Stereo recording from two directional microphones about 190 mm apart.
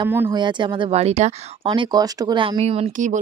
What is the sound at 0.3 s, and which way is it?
Speech, 25° right (ahead or behind).